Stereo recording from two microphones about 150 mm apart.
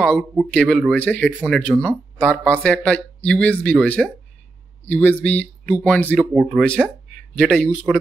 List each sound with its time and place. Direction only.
0.5 s a man's voice: 5° left (ahead or behind)